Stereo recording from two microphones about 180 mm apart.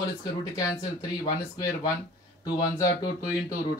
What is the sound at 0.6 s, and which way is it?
Speech, 20° left (ahead or behind).